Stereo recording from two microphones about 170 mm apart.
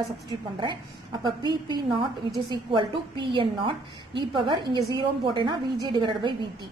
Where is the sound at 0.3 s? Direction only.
30° right (ahead or behind).